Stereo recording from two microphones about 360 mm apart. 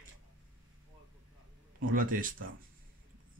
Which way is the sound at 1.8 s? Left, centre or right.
Right.